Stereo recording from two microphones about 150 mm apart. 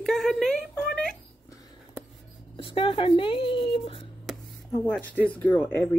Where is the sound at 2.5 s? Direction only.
35° left (ahead or behind).